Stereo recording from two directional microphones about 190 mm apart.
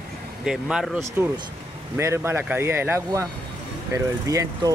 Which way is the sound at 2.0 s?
15° right (ahead or behind).